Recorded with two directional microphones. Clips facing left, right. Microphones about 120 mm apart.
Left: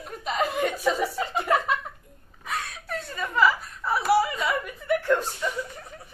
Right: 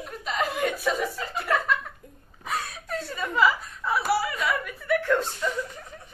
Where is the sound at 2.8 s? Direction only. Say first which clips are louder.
Right 1 dB; centre (ahead or behind).